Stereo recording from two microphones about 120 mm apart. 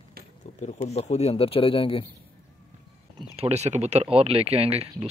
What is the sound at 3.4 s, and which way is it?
Speech, 65° right (ahead or behind).